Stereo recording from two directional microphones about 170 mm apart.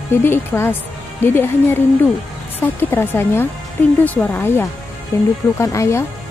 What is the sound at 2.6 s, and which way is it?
Speech, 15° left (ahead or behind).